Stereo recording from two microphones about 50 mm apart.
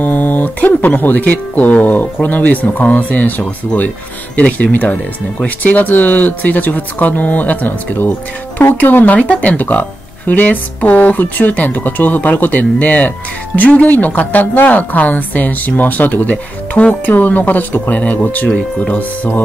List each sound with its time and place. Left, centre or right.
0.0 s speech: left
18.5 s speech: left
18.9 s speech: left